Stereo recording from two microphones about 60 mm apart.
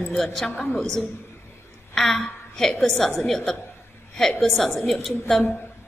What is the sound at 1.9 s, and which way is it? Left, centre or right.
A woman's voice, centre.